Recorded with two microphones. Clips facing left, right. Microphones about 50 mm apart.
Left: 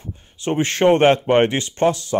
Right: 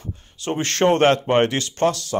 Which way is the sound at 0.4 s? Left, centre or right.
Left.